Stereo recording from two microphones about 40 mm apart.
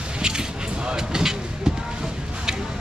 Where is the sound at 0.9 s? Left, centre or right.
Centre.